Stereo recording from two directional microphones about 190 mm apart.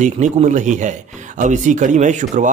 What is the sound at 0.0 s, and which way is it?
Speech, 40° right (ahead or behind).